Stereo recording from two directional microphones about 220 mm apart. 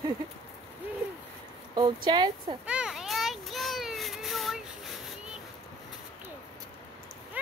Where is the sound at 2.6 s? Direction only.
5° right (ahead or behind).